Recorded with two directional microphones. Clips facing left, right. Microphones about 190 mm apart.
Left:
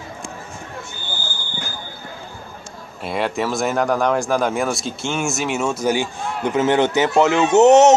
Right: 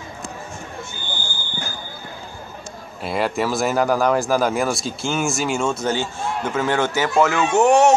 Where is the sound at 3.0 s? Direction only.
Centre (ahead or behind).